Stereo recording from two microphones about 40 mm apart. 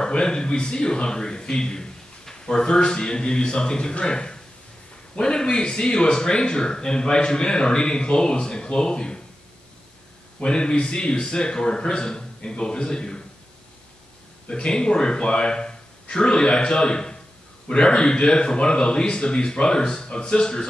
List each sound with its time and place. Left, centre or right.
0.0 s speech: left
10.4 s speech: left
14.5 s speech: left